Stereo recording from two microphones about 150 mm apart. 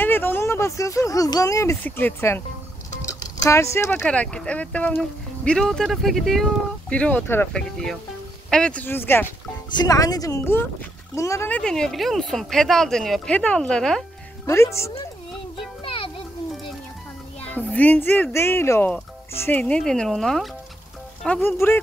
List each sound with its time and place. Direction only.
0.0 s speech: 15° left (ahead or behind)
3.4 s speech: 20° left (ahead or behind)
4.0 s speech: 5° left (ahead or behind)
9.8 s speech: 25° left (ahead or behind); by 14.0 s 5° left (ahead or behind)
14.4 s speech: 20° left (ahead or behind)
15.8 s music: 35° left (ahead or behind)
17.4 s speech: 10° left (ahead or behind)